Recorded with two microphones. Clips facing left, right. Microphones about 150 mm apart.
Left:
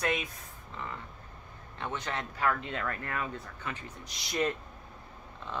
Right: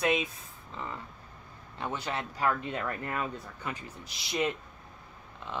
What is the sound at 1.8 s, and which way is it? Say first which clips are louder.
Speech: right 1 dB; 10° right (ahead or behind).